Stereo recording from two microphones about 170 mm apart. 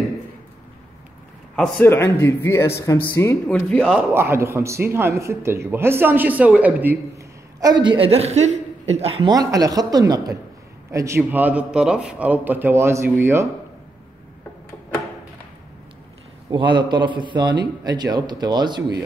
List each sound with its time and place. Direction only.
1.5 s speech: 10° left (ahead or behind)
4.1 s speech: 15° right (ahead or behind)
7.8 s a woman's voice: 30° right (ahead or behind)
9.3 s a man's voice: 20° right (ahead or behind)
16.4 s a man's voice: 25° right (ahead or behind)